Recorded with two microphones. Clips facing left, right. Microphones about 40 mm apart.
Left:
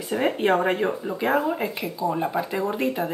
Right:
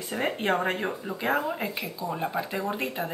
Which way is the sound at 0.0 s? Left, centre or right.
Centre.